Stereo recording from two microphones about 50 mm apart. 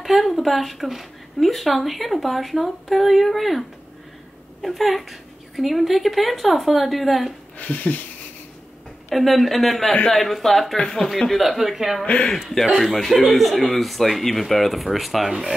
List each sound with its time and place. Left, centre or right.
0.0 s speech: centre
7.5 s speech: left
9.1 s speech: centre